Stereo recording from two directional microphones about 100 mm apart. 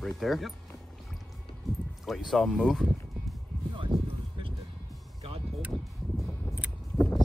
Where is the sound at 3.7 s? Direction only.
55° right (ahead or behind).